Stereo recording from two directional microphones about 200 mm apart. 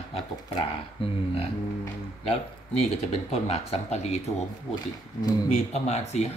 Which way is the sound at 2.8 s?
30° left (ahead or behind).